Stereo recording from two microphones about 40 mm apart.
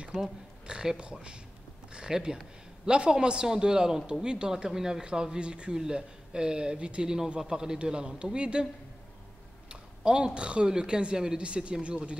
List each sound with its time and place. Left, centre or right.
0.1 s speech: centre
0.7 s a man's voice: right
9.7 s a woman's voice: right